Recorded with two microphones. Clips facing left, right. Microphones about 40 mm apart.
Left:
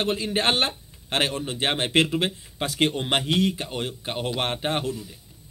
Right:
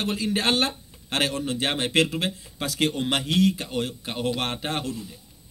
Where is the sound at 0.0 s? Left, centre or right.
Left.